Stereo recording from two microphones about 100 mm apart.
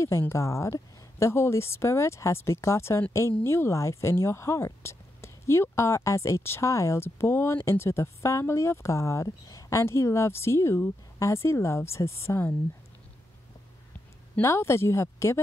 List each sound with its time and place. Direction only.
0.2 s speech: 30° left (ahead or behind)
14.4 s speech: 25° left (ahead or behind)